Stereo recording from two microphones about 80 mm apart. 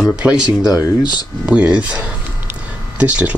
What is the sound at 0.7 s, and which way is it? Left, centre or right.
Speech, left.